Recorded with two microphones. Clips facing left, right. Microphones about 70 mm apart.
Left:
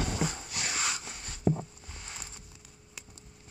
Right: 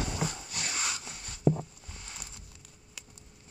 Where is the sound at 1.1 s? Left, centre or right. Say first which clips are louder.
Right 4 dB; centre.